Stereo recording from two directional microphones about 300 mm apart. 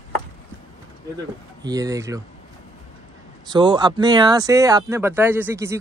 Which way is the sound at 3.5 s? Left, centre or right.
Centre.